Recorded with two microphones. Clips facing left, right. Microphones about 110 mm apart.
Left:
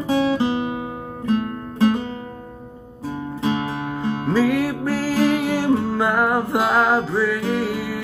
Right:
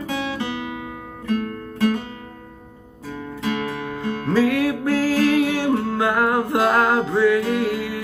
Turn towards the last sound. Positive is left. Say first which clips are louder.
# right 1 dB
turn(degrees=5)  # may be behind; listen again after turning